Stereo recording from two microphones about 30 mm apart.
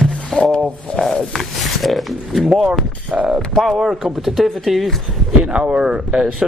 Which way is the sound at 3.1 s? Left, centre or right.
Right.